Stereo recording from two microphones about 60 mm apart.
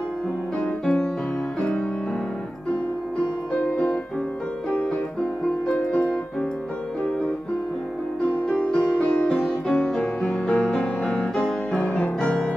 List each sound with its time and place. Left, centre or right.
0.6 s music: centre
3.5 s music: left
5.7 s music: centre
8.5 s music: centre
9.5 s music: centre
12.2 s music: centre